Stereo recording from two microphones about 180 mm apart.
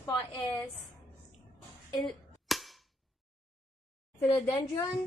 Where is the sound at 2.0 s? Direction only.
Centre (ahead or behind).